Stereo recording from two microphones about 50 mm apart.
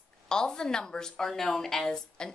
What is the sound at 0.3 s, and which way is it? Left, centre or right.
A woman's voice, centre.